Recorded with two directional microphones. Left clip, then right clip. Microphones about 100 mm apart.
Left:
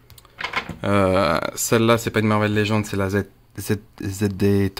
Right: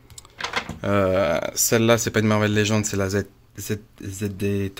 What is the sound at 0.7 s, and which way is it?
Speech, 25° left (ahead or behind).